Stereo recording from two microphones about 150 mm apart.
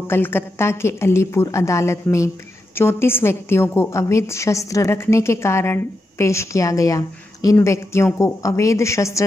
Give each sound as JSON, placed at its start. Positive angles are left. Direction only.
{"t": 0.1, "sound": "a woman's voice", "side_deg": 15}